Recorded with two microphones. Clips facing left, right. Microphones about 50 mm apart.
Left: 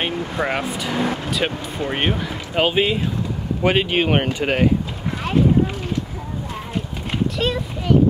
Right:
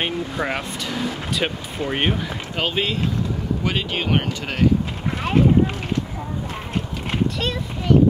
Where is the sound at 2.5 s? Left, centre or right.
Centre.